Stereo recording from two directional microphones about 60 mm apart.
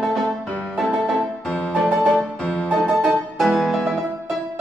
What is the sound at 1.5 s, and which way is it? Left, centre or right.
Music, centre.